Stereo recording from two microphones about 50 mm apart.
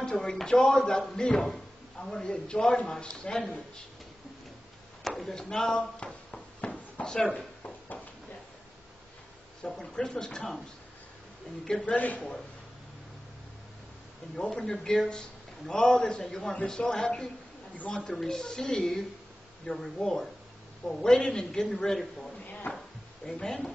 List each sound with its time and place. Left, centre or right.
0.1 s a man's voice: centre
5.0 s a man's voice: centre
5.8 s a sound: centre
7.3 s drawer open or close: left
9.8 s a man's voice: centre
11.8 s a man's voice: left
14.5 s a man's voice: centre
16.3 s a man's voice: centre
22.7 s speech: left
23.2 s a man's voice: centre